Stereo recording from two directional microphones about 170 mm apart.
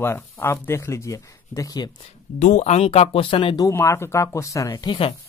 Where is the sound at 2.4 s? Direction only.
45° left (ahead or behind).